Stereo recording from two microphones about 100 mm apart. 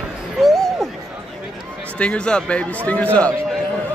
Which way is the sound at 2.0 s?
10° left (ahead or behind).